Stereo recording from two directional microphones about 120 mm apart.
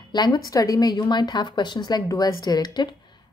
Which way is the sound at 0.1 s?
35° left (ahead or behind).